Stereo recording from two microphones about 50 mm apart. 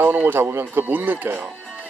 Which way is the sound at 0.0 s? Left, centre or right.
Right.